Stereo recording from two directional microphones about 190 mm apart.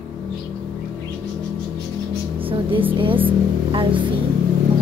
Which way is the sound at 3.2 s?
25° right (ahead or behind).